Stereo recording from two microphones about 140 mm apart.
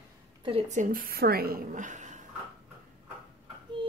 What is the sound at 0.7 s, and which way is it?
A woman's voice, 75° right (ahead or behind).